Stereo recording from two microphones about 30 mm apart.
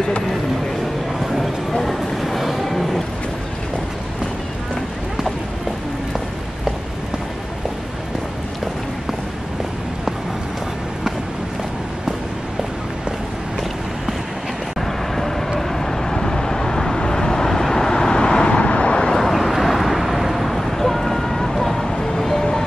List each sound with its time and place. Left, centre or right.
1.2 s a sound: centre
15.7 s vehicle: centre
18.2 s vehicle: left
19.0 s vehicle: centre
19.3 s vehicle: centre
21.9 s music: centre